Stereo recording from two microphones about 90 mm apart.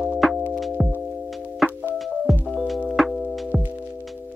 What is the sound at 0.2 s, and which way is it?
Music, centre (ahead or behind).